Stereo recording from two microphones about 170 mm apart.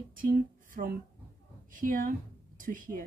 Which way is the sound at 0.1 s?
55° right (ahead or behind).